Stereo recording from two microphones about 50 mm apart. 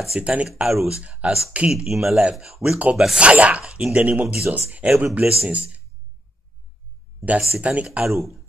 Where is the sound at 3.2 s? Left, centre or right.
Right.